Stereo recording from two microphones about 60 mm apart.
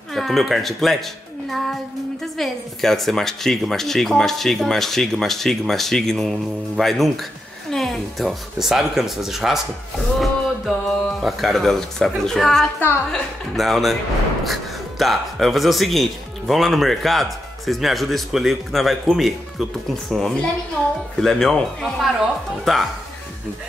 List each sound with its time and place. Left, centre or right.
0.1 s speech: centre